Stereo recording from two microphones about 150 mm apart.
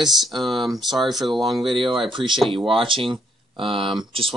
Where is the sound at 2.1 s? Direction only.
30° right (ahead or behind).